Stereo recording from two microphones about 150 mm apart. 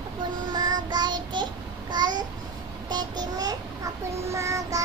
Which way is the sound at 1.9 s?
30° right (ahead or behind).